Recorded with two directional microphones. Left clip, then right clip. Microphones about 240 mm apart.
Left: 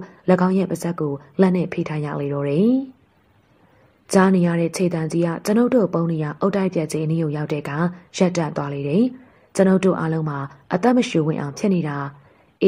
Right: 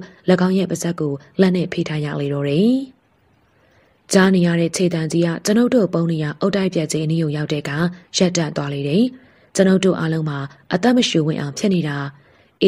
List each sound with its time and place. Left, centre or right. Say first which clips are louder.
0.0 s a woman's voice: right 1 dB; right
4.1 s a woman's voice: right 2 dB; right